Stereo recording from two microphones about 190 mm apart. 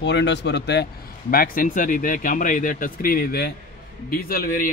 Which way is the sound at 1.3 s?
50° left (ahead or behind).